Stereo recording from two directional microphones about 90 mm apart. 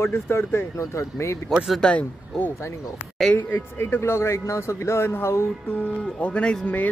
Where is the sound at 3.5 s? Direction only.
25° left (ahead or behind).